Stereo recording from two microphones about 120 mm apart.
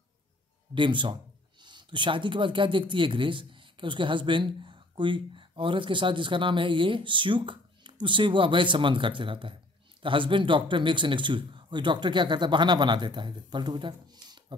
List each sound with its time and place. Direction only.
0.7 s a man's voice: 40° right (ahead or behind)